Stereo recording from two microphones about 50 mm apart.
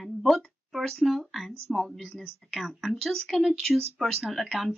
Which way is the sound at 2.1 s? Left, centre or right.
Centre.